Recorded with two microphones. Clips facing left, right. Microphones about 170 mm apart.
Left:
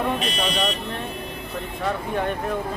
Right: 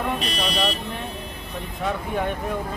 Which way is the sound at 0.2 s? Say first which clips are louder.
Left 1 dB; 35° right (ahead or behind).